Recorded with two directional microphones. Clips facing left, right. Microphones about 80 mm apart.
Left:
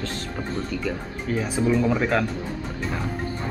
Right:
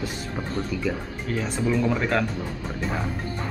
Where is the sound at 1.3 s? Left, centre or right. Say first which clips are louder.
Left 3 dB; centre.